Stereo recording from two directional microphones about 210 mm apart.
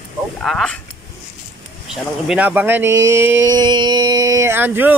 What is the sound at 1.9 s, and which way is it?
Speech, 5° right (ahead or behind).